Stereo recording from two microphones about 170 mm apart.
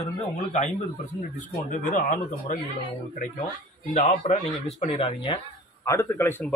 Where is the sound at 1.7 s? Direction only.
50° left (ahead or behind).